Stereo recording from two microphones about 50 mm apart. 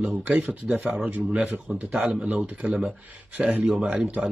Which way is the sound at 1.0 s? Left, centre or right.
Right.